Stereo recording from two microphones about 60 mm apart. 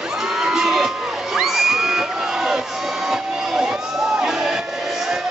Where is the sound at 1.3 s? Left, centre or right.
Centre.